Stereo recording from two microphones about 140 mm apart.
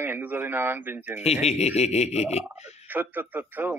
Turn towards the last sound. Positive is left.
turn(degrees=-15)  # may be behind; listen again after turning